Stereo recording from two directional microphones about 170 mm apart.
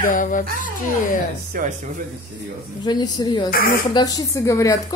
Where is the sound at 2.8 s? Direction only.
25° left (ahead or behind).